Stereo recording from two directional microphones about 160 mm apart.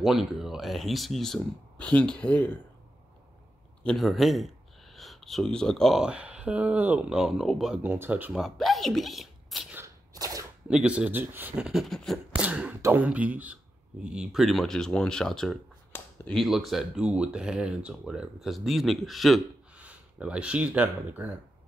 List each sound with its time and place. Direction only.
0.0 s speech: centre (ahead or behind)
3.8 s speech: centre (ahead or behind)
9.8 s a sound: 20° right (ahead or behind)
10.7 s speech: 5° right (ahead or behind)